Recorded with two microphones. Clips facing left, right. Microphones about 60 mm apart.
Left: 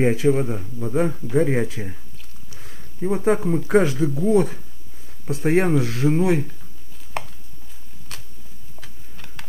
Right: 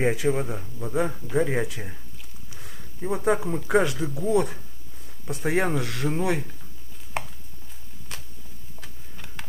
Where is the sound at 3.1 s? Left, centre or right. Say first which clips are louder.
Left 4 dB; centre.